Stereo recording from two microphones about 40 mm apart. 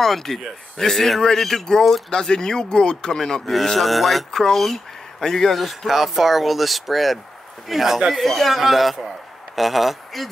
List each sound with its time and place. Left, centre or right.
0.0 s speech: centre
3.6 s speech: centre
5.9 s speech: centre